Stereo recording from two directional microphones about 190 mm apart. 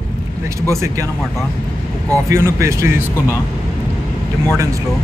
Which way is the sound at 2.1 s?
15° right (ahead or behind).